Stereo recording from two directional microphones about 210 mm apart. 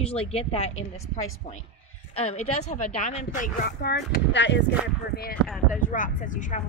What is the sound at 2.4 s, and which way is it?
Speech, 90° left.